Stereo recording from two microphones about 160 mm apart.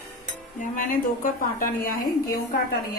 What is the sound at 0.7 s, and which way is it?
A woman's voice, 60° left (ahead or behind).